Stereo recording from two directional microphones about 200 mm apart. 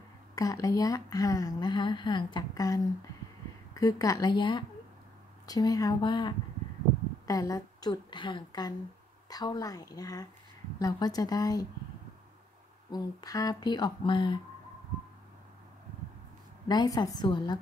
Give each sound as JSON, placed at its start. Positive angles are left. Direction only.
{"t": 0.4, "sound": "speech", "side_deg": 15}
{"t": 12.9, "sound": "speech", "side_deg": 20}
{"t": 16.6, "sound": "speech", "side_deg": 20}